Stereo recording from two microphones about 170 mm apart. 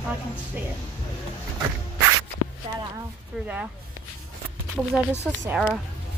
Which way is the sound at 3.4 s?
10° right (ahead or behind).